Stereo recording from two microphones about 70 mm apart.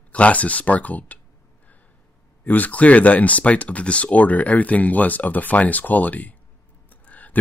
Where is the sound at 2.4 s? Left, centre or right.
Left.